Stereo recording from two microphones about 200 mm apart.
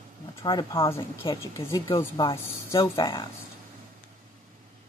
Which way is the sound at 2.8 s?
25° left (ahead or behind).